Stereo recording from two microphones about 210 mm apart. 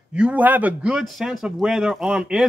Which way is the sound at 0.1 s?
5° right (ahead or behind).